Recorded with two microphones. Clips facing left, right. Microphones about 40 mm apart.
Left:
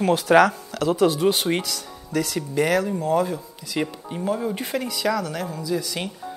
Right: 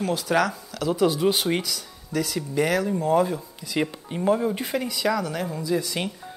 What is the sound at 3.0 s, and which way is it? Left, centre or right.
Speech, centre.